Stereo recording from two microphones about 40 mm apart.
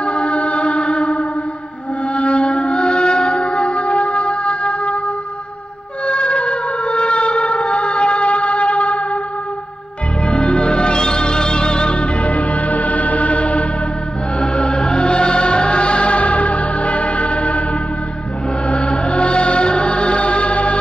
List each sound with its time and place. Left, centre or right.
0.0 s music: left
6.0 s a sound: left
10.2 s music: left
14.4 s music: left
18.7 s music: left